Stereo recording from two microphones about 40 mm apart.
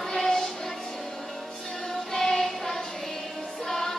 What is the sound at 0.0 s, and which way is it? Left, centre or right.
Music, centre.